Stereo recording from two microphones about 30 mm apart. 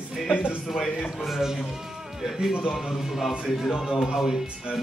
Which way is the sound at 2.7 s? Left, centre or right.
Centre.